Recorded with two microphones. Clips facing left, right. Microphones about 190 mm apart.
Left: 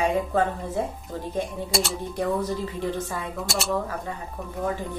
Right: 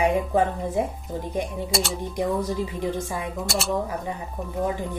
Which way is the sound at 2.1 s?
15° right (ahead or behind).